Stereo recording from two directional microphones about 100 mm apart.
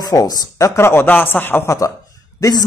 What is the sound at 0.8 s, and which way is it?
Speech, 25° left (ahead or behind).